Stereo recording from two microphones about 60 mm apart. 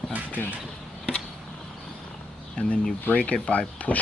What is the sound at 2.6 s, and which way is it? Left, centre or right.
Speech, left.